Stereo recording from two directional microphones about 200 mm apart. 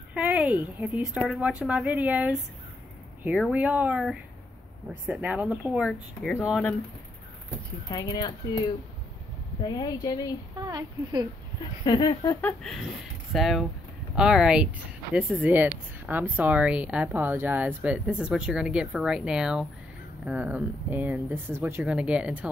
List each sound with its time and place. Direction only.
0.1 s a woman's voice: 5° right (ahead or behind)
7.9 s speech: 20° left (ahead or behind)
10.6 s a woman's voice: 20° right (ahead or behind)
11.8 s a woman's voice: 20° left (ahead or behind); by 22.5 s 5° right (ahead or behind)